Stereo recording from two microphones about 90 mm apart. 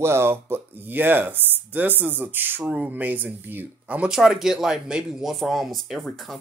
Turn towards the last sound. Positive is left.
turn(degrees=5)  # may be behind; listen again after turning